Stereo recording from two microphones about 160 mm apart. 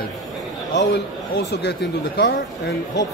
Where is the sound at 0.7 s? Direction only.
85° left.